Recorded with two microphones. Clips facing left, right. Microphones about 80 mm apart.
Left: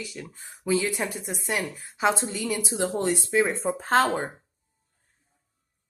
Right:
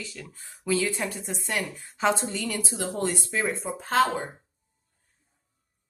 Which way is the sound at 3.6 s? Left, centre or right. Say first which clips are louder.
Left 2 dB; left.